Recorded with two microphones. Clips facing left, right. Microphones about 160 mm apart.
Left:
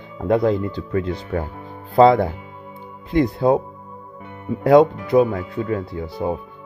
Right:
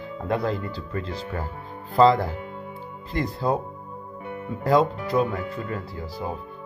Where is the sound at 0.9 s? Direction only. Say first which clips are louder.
Left 8 dB; 55° left (ahead or behind).